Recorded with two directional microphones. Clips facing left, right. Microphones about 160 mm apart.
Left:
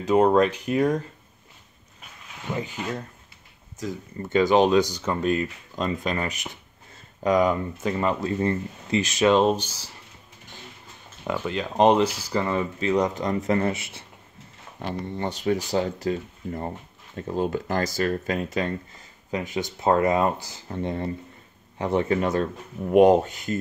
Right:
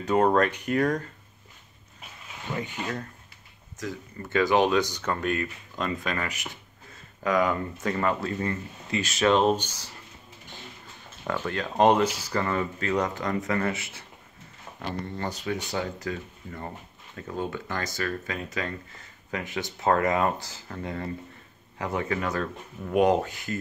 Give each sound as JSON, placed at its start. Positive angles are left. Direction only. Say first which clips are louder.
{"t": 0.0, "sound": "speech", "louder": "left 3 dB", "side_deg": 15}
{"t": 2.4, "sound": "speech", "louder": "left 2 dB", "side_deg": 10}
{"t": 4.2, "sound": "speech", "louder": "left 3 dB", "side_deg": 20}
{"t": 5.2, "sound": "speech", "louder": "left 4 dB", "side_deg": 20}
{"t": 9.3, "sound": "speech", "louder": "left 1 dB", "side_deg": 5}
{"t": 11.2, "sound": "speech", "louder": "left 2 dB", "side_deg": 15}
{"t": 15.4, "sound": "speech", "louder": "left 9 dB", "side_deg": 30}
{"t": 19.3, "sound": "speech", "louder": "left 4 dB", "side_deg": 15}